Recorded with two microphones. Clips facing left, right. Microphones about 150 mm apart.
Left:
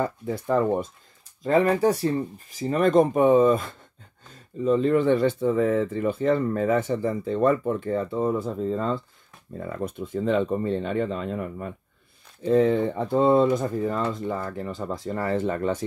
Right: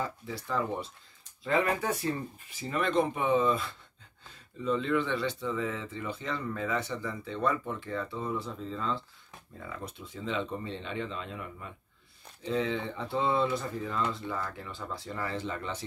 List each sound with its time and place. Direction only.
0.0 s speech: 50° left (ahead or behind)
1.4 s speech: 40° left (ahead or behind)